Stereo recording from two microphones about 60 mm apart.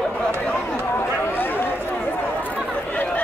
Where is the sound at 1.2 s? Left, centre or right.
Left.